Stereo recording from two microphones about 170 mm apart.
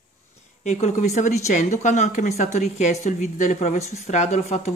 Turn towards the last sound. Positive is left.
turn(degrees=40)  # may be behind; listen again after turning